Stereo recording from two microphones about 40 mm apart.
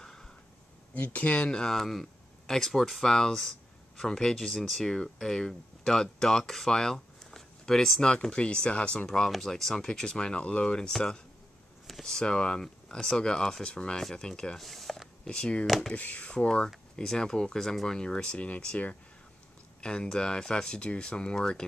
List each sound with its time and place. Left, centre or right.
0.9 s speech: left
1.5 s speech: centre
8.0 s speech: left
9.3 s speech: centre; by 10.9 s left
11.9 s speech: centre
14.6 s a sound: centre
15.2 s speech: left
15.6 s speech: centre
16.0 s speech: left
16.3 s speech: left
18.4 s speech: left
19.8 s speech: left